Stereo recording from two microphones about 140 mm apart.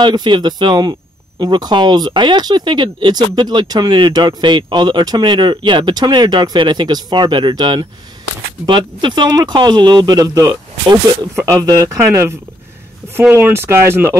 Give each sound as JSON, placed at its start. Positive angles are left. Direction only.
{"t": 0.0, "sound": "speech", "side_deg": -35}